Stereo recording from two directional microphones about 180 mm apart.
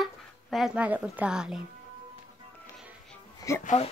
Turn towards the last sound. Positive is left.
turn(degrees=40)  # may be behind; listen again after turning